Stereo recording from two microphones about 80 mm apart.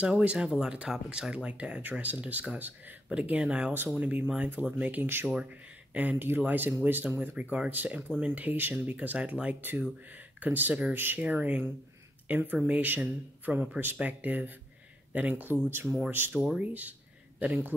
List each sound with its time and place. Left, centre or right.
0.0 s speech: centre